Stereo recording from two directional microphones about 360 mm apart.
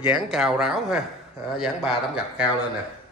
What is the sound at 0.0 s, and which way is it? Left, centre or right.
Speech, centre.